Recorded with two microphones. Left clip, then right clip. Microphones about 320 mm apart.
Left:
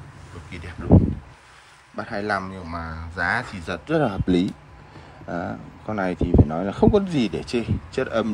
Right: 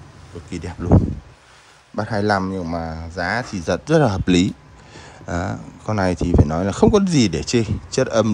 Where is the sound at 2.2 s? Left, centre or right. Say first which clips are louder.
Right 6 dB; centre.